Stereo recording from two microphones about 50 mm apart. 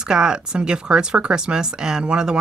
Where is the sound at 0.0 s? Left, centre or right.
Centre.